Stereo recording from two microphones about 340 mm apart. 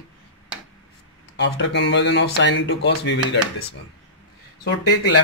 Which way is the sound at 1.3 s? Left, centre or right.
Left.